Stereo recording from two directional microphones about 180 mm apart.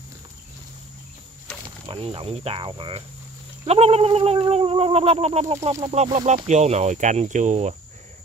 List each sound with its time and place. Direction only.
1.9 s cat: 30° right (ahead or behind)